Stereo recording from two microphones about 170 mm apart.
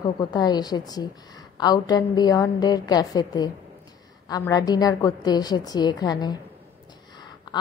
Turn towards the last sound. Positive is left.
turn(degrees=25)  # may be behind; listen again after turning